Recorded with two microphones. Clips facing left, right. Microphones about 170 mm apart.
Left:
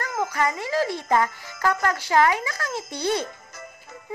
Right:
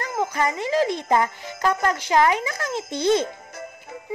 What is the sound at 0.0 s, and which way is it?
Speech, 20° right (ahead or behind).